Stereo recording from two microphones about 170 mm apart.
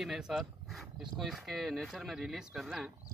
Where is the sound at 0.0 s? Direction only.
Centre (ahead or behind).